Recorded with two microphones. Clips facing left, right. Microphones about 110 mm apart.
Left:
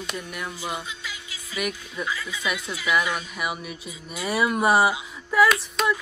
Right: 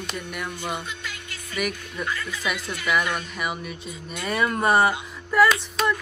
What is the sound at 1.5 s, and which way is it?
Speech, 5° left (ahead or behind).